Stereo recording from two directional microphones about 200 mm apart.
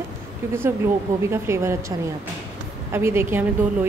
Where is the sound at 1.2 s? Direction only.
15° right (ahead or behind).